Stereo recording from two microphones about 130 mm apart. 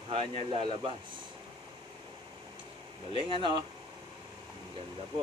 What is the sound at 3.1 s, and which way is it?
Speech, 40° right (ahead or behind).